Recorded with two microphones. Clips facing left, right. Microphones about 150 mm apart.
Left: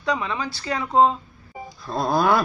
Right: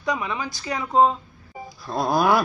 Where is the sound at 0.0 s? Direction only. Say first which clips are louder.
Left 1 dB; 15° right (ahead or behind).